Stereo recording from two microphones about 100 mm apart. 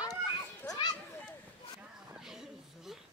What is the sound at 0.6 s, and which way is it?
Children playing, 40° left (ahead or behind).